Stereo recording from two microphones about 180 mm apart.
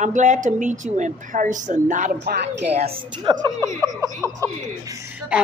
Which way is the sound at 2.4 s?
70° right (ahead or behind).